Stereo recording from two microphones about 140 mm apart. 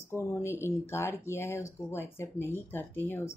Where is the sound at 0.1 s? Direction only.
20° left (ahead or behind).